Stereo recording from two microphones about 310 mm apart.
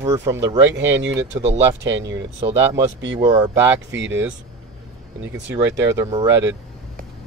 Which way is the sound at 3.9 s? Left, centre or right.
Right.